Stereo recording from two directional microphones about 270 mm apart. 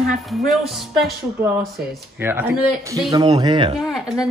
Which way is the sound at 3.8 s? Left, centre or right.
Centre.